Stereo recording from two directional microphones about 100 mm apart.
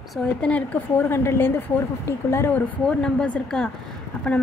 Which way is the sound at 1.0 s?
25° left (ahead or behind).